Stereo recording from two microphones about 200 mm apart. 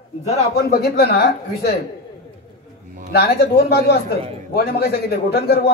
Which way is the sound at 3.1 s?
55° left (ahead or behind).